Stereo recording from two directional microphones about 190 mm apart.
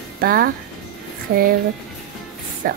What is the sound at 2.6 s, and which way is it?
Speech, 45° right (ahead or behind).